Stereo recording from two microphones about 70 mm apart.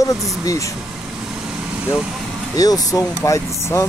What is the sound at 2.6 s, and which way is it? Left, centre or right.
Speech, left.